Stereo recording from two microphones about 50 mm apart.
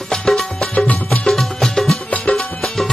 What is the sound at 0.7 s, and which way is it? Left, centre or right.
Music, left.